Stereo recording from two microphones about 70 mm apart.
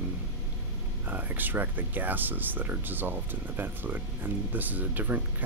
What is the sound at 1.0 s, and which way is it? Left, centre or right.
Speech, right.